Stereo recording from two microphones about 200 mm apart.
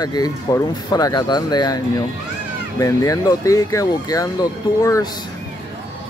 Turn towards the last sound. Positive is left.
turn(degrees=15)  # may be behind; listen again after turning